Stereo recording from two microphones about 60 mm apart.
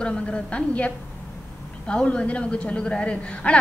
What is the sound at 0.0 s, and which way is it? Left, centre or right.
A woman's voice, centre.